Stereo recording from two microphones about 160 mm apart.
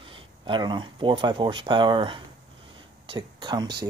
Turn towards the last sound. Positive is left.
turn(degrees=-25)  # may be behind; listen again after turning